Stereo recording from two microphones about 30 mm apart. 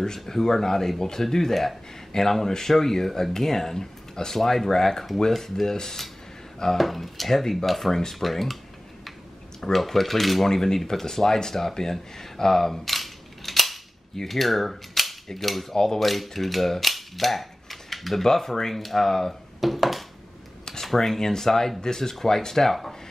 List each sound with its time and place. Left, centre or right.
0.0 s speech: centre
6.8 s speech: centre
7.9 s speech: centre
8.2 s speech: centre
9.6 s speech: centre
10.5 s speech: centre
14.1 s cap gun: centre
15.2 s speech: centre
15.7 s speech: centre
16.0 s mechanisms: centre
18.2 s speech: centre
19.6 s a sound: centre
20.8 s speech: centre